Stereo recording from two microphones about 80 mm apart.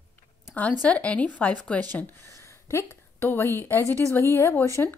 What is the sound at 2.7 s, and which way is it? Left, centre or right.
A woman's voice, left.